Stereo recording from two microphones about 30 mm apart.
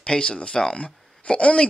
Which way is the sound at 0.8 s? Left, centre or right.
Left.